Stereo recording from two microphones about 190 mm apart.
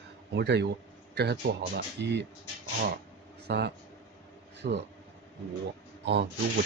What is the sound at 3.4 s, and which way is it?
A man's voice, 60° right (ahead or behind).